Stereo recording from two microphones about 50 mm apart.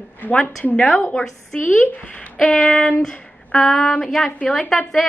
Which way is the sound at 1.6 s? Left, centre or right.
Left.